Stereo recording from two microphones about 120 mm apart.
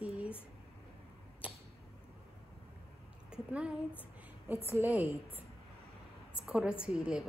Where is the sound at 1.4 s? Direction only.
10° right (ahead or behind).